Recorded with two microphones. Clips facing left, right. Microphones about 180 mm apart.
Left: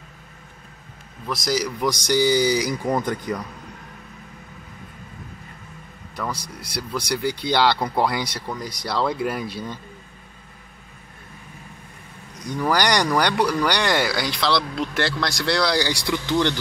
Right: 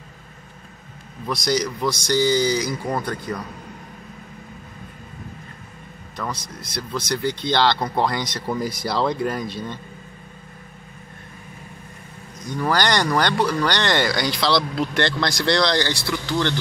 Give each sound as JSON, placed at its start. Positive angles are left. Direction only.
{"t": 1.2, "sound": "speech", "side_deg": 0}
{"t": 6.1, "sound": "speech", "side_deg": 10}
{"t": 8.5, "sound": "speech", "side_deg": -5}
{"t": 12.4, "sound": "speech", "side_deg": 10}